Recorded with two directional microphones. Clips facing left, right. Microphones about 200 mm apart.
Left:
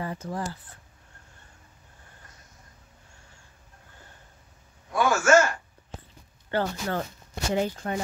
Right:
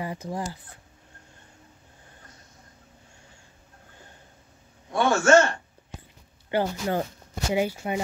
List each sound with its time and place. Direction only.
0.0 s speech: 15° right (ahead or behind)
4.9 s a sound: 30° right (ahead or behind)
6.5 s speech: 15° right (ahead or behind)